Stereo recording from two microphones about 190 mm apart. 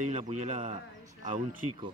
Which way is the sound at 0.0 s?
40° right (ahead or behind).